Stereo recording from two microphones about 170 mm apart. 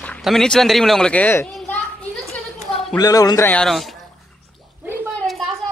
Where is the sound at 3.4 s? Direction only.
5° left (ahead or behind).